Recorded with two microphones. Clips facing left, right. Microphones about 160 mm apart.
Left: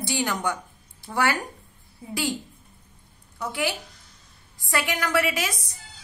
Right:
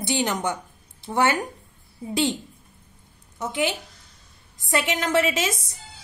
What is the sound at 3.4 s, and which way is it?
A woman's voice, 20° right (ahead or behind).